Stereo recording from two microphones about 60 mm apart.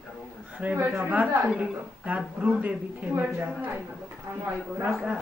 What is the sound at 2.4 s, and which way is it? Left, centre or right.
A woman's voice, right.